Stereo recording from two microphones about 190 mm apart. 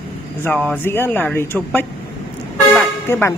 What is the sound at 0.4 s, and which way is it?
Speech, 5° left (ahead or behind).